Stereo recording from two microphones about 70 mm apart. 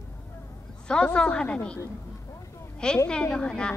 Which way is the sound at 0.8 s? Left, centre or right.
Centre.